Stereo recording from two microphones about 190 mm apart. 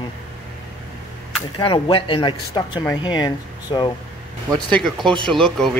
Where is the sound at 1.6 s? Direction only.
25° left (ahead or behind).